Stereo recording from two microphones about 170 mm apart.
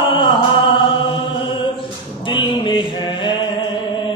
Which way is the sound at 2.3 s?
30° left (ahead or behind).